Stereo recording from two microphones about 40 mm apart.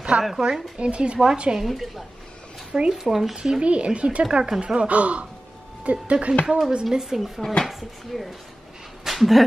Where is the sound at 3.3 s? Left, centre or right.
Centre.